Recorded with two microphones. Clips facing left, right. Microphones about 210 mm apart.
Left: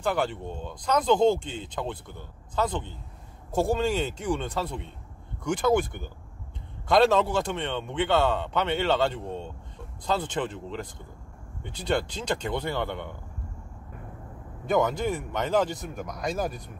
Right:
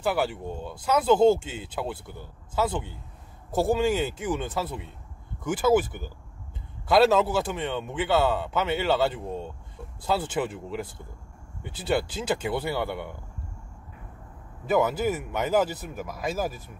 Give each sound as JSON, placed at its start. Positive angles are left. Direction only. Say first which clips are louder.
{"t": 0.0, "sound": "speech", "louder": "right 1 dB", "side_deg": -5}
{"t": 14.7, "sound": "speech", "louder": "right 1 dB", "side_deg": -5}